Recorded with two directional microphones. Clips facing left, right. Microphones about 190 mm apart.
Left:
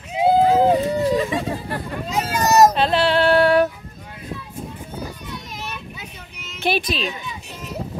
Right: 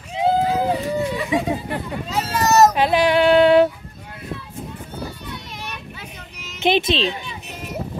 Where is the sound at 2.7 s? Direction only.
10° right (ahead or behind).